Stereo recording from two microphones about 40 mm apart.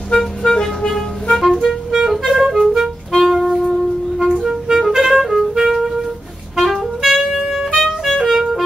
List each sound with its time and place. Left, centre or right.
0.1 s music: centre
1.5 s clarinet: centre
2.0 s music: centre
3.1 s music: centre
4.3 s clarinet: centre
4.7 s music: centre
6.5 s saxophone: centre